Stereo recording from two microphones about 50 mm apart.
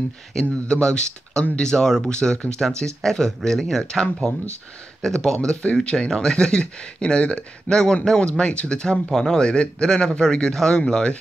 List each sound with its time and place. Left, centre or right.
0.3 s speech: centre
8.9 s speech: centre